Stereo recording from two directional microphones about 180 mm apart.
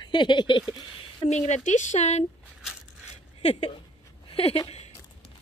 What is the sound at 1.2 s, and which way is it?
Speech, 40° left (ahead or behind).